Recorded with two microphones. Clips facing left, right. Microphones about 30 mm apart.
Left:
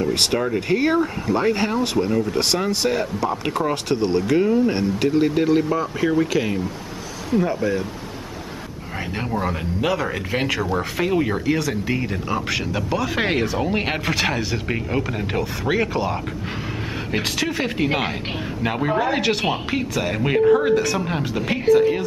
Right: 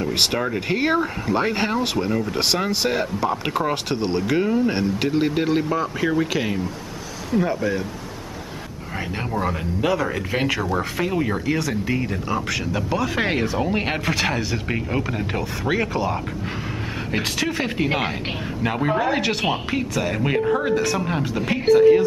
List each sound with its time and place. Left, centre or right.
0.0 s speech: centre
9.3 s speech: centre